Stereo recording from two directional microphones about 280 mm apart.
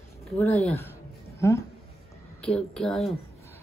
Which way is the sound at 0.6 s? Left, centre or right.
Centre.